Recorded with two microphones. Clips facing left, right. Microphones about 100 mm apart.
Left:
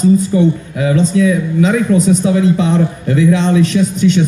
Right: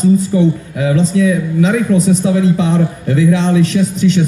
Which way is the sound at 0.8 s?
35° right (ahead or behind).